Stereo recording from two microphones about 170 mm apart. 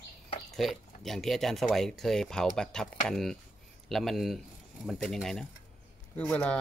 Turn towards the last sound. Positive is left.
turn(degrees=10)  # may be behind; listen again after turning